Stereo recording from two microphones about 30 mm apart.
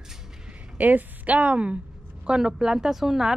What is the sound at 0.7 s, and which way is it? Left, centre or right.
Speech, right.